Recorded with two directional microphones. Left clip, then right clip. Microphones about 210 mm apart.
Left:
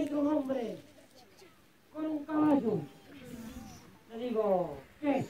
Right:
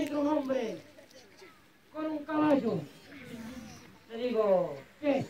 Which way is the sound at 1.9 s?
15° right (ahead or behind).